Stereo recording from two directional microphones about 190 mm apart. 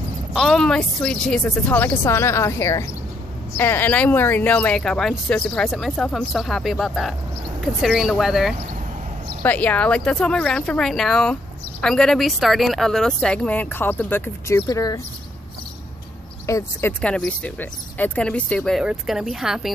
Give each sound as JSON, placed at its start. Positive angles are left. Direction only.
{"t": 0.3, "sound": "a woman's voice", "side_deg": 0}
{"t": 16.4, "sound": "a woman's voice", "side_deg": 15}
{"t": 17.0, "sound": "speech", "side_deg": 5}